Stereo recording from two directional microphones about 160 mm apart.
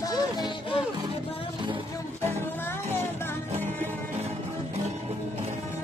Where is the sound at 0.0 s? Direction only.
25° left (ahead or behind).